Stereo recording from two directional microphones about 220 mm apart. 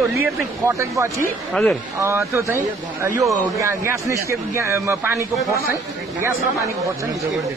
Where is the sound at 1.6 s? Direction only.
5° left (ahead or behind).